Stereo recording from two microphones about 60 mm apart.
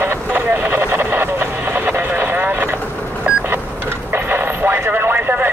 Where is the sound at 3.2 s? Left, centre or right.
Centre.